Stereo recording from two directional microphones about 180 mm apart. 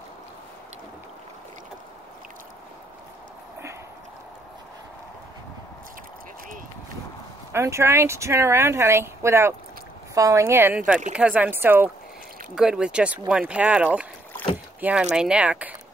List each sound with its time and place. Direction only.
7.5 s speech: 15° right (ahead or behind)